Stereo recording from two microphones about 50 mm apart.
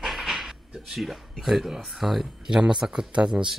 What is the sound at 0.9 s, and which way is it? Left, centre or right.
Speech, centre.